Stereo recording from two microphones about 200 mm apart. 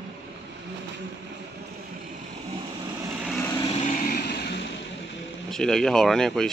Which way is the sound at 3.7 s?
35° left (ahead or behind).